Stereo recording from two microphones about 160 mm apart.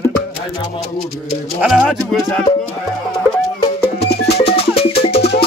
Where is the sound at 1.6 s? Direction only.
5° right (ahead or behind).